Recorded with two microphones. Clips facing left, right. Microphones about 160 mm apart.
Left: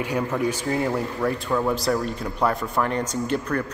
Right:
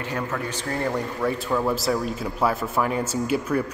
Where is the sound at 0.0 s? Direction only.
10° left (ahead or behind).